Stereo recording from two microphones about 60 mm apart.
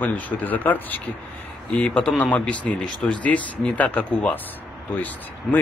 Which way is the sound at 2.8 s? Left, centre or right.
Centre.